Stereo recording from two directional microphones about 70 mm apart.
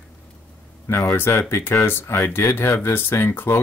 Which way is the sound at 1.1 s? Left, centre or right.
Left.